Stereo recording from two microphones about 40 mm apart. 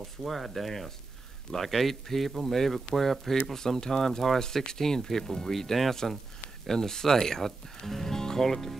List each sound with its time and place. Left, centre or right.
0.2 s speech: centre